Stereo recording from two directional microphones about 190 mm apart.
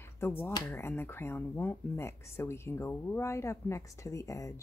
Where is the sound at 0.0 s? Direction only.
10° left (ahead or behind).